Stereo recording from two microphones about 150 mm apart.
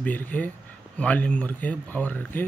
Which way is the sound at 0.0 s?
10° left (ahead or behind).